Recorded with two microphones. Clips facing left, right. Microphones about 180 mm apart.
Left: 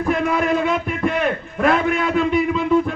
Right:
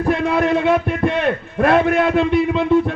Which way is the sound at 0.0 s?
30° right (ahead or behind).